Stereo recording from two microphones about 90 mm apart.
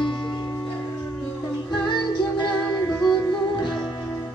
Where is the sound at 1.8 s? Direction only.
60° left (ahead or behind).